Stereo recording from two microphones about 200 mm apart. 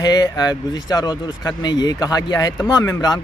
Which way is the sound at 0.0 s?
20° left (ahead or behind).